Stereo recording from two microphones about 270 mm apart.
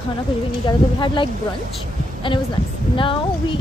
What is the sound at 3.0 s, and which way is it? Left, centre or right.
Speech, centre.